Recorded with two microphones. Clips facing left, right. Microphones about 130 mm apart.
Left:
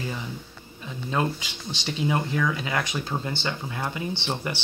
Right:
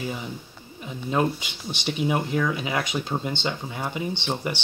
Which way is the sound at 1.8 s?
10° right (ahead or behind).